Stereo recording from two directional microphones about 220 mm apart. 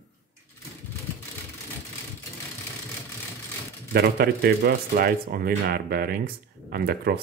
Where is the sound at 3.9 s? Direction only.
45° right (ahead or behind).